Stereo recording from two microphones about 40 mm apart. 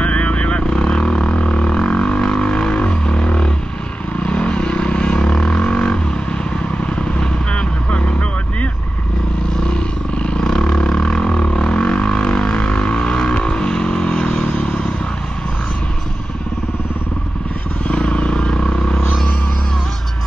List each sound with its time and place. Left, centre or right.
0.0 s vehicle: left
0.8 s didgeridoo: left
2.4 s a sound: left
4.3 s vehicle: left
5.4 s didgeridoo: left
7.2 s vehicle: left
9.7 s vehicle: left
10.4 s roar: centre
11.1 s didgeridoo: left
12.6 s vehicle: left
14.4 s vehicle: left
17.8 s vehicle: left